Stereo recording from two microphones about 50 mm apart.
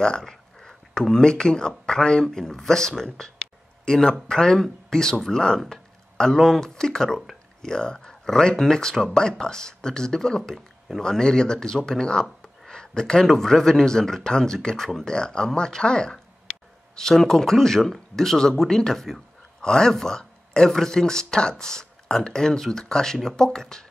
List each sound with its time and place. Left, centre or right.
0.0 s speech: centre